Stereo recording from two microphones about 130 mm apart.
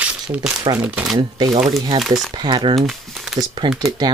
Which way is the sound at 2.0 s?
Centre (ahead or behind).